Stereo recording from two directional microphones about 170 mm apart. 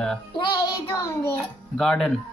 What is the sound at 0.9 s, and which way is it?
Speech, 15° left (ahead or behind).